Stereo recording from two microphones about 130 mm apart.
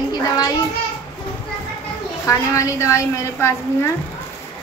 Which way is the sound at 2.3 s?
25° left (ahead or behind).